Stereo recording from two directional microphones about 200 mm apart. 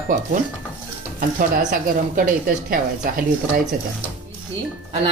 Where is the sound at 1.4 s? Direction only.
40° right (ahead or behind).